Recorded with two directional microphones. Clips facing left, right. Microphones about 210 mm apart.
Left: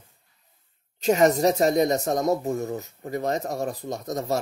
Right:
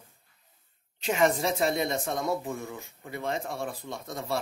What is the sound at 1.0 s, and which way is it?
Speech, 40° left (ahead or behind).